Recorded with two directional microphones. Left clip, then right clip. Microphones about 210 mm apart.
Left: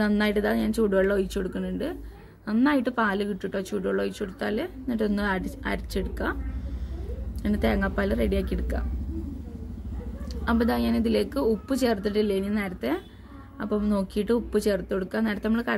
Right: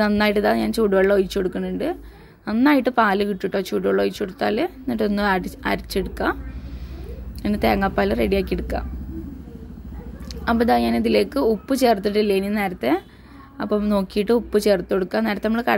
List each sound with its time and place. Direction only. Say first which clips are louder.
0.0 s a woman's voice: right 6 dB; 30° right (ahead or behind)
7.4 s speech: right 6 dB; 30° right (ahead or behind)
10.4 s a woman's voice: right 7 dB; 30° right (ahead or behind)